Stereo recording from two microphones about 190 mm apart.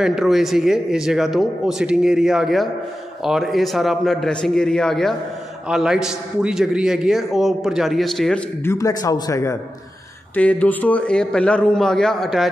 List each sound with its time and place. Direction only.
0.0 s a man's voice: centre (ahead or behind)
8.7 s a man's voice: 15° left (ahead or behind); by 12.4 s centre (ahead or behind)